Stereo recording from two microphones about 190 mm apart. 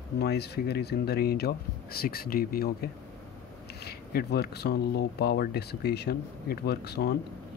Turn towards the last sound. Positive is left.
turn(degrees=60)  # may be behind; listen again after turning